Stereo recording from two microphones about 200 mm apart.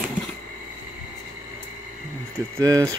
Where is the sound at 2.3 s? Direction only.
15° right (ahead or behind).